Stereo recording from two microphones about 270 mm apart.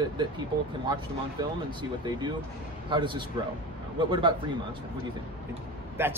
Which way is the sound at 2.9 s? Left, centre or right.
Centre.